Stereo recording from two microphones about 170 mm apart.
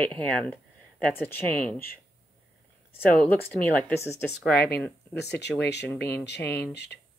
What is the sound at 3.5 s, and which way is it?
Speech, 10° left (ahead or behind).